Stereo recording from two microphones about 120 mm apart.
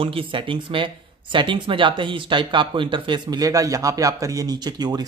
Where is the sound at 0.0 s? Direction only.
50° right (ahead or behind).